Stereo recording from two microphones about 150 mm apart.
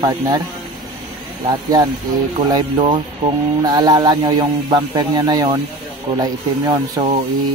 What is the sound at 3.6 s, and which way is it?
Speech, 25° right (ahead or behind).